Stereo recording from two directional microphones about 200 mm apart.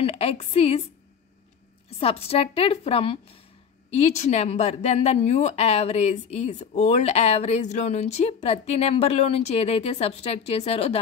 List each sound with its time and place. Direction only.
0.0 s a woman's voice: 30° left (ahead or behind)
2.0 s a woman's voice: 30° left (ahead or behind)